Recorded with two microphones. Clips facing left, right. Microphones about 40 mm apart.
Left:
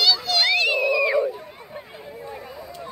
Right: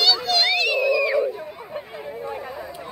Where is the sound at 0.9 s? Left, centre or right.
Left.